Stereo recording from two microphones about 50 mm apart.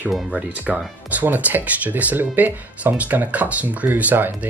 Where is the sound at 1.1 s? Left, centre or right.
Right.